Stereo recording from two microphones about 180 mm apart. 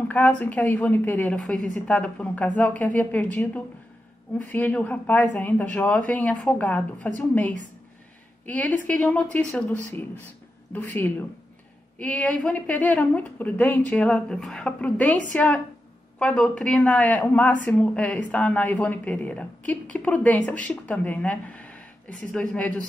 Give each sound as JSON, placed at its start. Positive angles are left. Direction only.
{"t": 0.1, "sound": "a woman's voice", "side_deg": 10}